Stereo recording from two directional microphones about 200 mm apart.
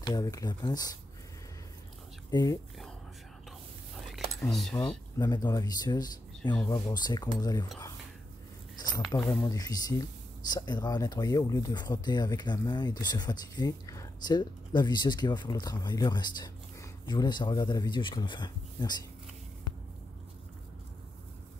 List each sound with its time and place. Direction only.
0.0 s speech: 20° left (ahead or behind)
2.3 s speech: 20° left (ahead or behind)
4.4 s speech: centre (ahead or behind)
5.2 s speech: 20° left (ahead or behind)
9.4 s speech: 20° left (ahead or behind)